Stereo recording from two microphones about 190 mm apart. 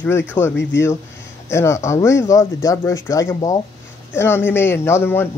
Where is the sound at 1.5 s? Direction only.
15° left (ahead or behind).